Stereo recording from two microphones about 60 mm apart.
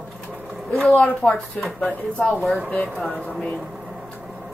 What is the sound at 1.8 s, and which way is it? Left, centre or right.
Speech, left.